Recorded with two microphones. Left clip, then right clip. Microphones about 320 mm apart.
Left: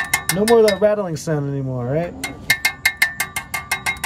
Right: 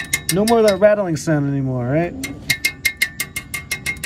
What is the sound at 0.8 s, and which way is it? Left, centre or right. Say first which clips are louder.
A man's voice: right 3 dB; centre.